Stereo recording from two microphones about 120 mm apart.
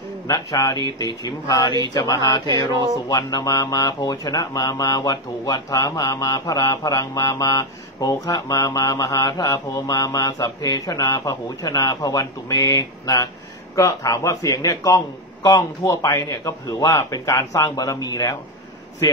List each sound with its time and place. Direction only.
0.3 s speech: 30° left (ahead or behind)